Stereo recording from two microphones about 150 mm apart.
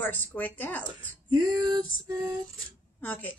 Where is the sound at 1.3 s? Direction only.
30° right (ahead or behind).